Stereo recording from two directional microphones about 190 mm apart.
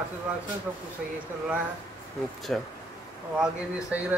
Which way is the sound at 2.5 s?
5° left (ahead or behind).